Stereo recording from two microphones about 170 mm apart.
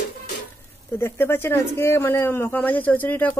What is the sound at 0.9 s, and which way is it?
Speech, 15° left (ahead or behind).